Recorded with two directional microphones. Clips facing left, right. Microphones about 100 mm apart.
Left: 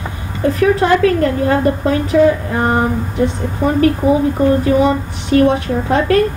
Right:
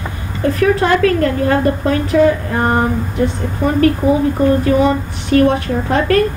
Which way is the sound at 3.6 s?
25° left (ahead or behind).